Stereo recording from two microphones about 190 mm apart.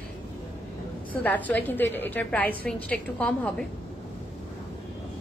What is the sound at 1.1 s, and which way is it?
A woman's voice, 10° left (ahead or behind).